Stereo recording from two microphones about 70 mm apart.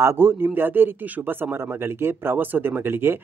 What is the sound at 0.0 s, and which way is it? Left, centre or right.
A man's voice, right.